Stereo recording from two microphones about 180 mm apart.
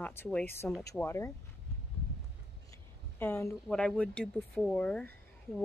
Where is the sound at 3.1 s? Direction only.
10° left (ahead or behind).